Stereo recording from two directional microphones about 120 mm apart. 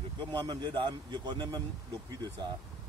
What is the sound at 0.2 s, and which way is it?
A man's voice, 35° right (ahead or behind).